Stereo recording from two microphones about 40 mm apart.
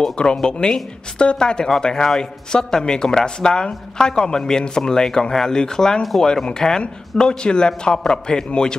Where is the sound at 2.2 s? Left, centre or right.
Left.